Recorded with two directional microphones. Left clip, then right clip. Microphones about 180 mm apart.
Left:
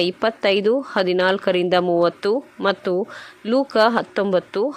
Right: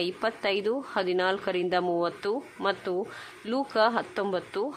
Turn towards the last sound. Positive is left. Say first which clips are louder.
# left 10 dB
turn(degrees=30)  # may be behind; listen again after turning